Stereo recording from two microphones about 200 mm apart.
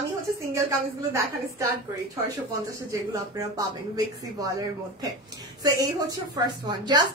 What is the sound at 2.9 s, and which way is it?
A woman's voice, 15° right (ahead or behind).